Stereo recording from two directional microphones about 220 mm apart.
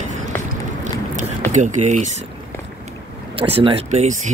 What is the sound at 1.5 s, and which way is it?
Speech, 35° right (ahead or behind).